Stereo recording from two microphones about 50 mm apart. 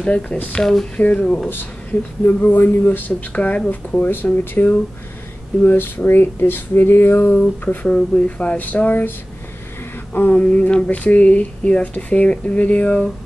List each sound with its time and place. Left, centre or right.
0.0 s speech: centre
0.6 s speech: centre
0.9 s speech: left
3.1 s speech: left
7.3 s speech: left
8.5 s speech: left
10.1 s speech: left
10.4 s speech: left